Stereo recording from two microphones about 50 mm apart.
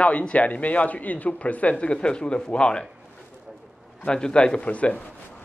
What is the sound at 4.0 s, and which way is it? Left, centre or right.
A man's voice, centre.